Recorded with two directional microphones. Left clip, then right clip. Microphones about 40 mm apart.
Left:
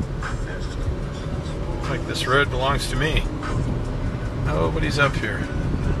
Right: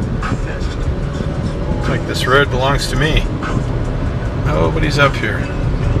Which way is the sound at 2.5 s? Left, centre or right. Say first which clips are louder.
Right 7 dB; right.